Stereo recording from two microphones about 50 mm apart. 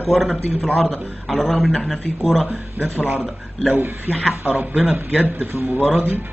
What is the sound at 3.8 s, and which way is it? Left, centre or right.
Speech, right.